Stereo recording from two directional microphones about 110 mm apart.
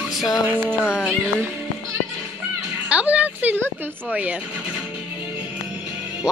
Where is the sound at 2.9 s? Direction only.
10° right (ahead or behind).